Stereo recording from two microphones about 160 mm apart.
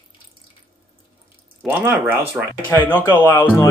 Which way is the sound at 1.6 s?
15° right (ahead or behind).